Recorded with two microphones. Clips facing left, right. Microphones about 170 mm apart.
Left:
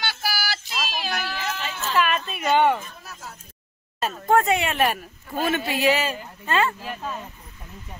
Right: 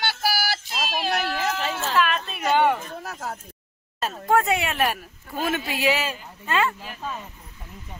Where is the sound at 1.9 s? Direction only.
5° left (ahead or behind).